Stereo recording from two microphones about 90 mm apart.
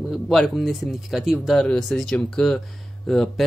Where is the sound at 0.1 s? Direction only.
Centre (ahead or behind).